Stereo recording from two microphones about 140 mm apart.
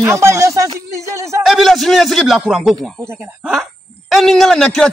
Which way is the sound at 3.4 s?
Centre (ahead or behind).